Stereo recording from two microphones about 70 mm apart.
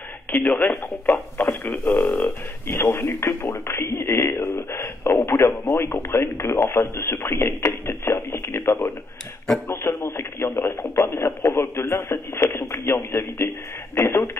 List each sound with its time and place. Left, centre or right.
0.3 s speech: left